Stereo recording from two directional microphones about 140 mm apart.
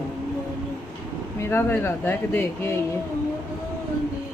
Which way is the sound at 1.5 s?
15° left (ahead or behind).